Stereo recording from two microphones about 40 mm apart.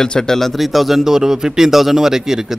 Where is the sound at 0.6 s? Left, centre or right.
Centre.